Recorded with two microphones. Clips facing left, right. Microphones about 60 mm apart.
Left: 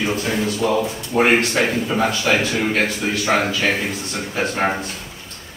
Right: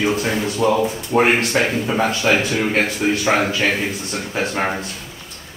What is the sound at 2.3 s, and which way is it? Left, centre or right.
Speech, centre.